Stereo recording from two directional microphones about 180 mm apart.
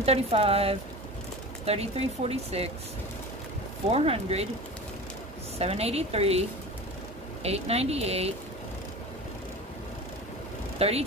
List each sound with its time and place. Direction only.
0.0 s speech: 35° right (ahead or behind)
3.9 s speech: 35° right (ahead or behind)
5.6 s speech: 35° right (ahead or behind)
7.4 s speech: 35° right (ahead or behind)
10.8 s speech: 35° right (ahead or behind)